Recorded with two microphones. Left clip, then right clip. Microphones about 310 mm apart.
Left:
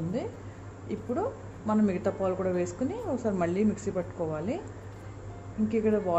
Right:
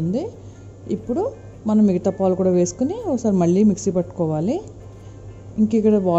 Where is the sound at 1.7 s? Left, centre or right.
Right.